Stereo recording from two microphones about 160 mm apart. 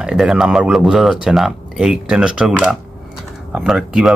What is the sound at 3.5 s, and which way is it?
Speech, centre (ahead or behind).